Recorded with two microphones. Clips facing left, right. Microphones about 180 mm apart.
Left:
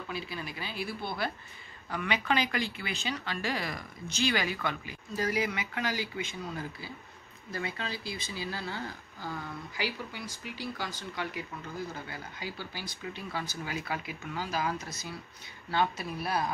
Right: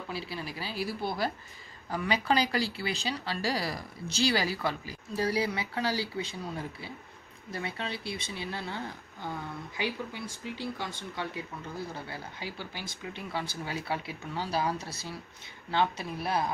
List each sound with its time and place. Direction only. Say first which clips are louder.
0.1 s speech: right 1 dB; 30° right (ahead or behind)